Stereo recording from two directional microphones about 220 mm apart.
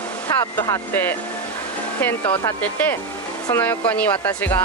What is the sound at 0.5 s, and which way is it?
Speech, 10° left (ahead or behind).